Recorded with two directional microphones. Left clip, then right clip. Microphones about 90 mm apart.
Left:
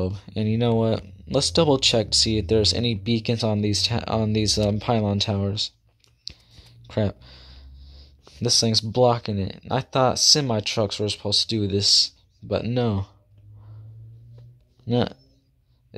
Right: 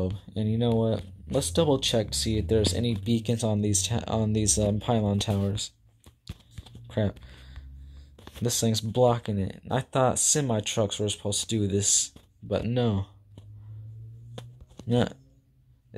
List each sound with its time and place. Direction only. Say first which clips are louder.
0.0 s speech: left 4 dB; 30° left (ahead or behind)
7.0 s a sound: left 4 dB; 35° left (ahead or behind)
8.9 s speech: left 2 dB; 25° left (ahead or behind)
14.9 s speech: left 3 dB; 15° left (ahead or behind)